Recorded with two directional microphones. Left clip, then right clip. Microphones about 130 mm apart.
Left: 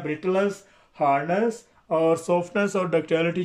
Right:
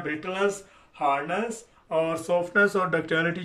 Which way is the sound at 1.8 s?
40° left (ahead or behind).